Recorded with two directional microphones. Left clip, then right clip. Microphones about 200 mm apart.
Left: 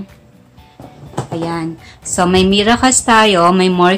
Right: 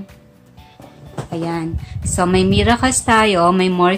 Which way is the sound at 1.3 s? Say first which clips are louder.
Left 2 dB; 20° right (ahead or behind).